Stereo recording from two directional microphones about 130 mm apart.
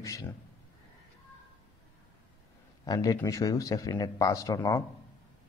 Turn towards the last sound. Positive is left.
turn(degrees=30)  # may be behind; listen again after turning